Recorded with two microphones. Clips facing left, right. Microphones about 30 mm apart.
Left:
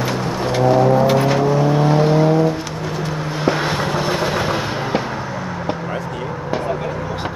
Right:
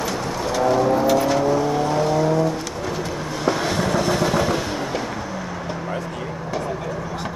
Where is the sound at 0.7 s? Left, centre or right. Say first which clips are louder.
Left 4 dB; left.